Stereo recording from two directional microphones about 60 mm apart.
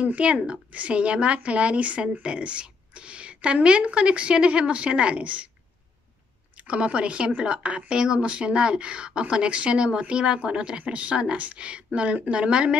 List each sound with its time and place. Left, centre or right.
0.0 s speech: right
6.5 s speech: centre